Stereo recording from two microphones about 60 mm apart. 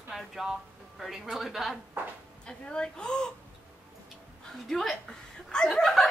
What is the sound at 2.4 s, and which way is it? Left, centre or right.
Speech, centre.